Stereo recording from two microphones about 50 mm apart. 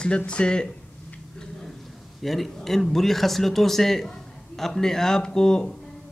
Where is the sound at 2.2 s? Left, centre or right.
Centre.